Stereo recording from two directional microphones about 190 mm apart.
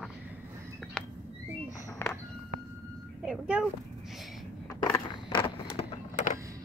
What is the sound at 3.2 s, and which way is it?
Cat, 5° right (ahead or behind).